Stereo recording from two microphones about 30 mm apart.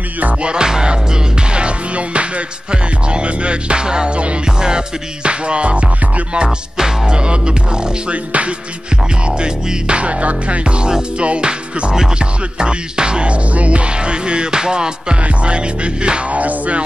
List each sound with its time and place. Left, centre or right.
0.4 s music: right
7.1 s music: right
8.3 s music: right
9.4 s music: right
10.8 s music: right
15.2 s music: right
16.3 s music: right